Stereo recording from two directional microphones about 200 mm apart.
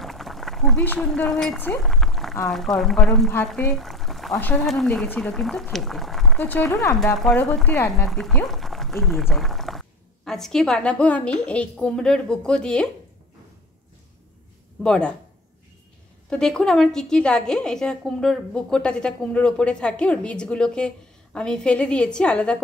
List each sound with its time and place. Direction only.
0.0 s a sound: centre (ahead or behind)
2.4 s a woman's voice: centre (ahead or behind)
7.0 s speech: centre (ahead or behind)
8.1 s speech: centre (ahead or behind)
14.8 s a woman's voice: 5° left (ahead or behind)
16.3 s a woman's voice: 5° left (ahead or behind)